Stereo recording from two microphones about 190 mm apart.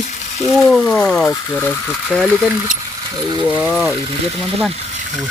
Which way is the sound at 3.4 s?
10° right (ahead or behind).